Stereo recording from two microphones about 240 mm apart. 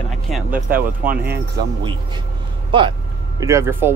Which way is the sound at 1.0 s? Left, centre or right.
Right.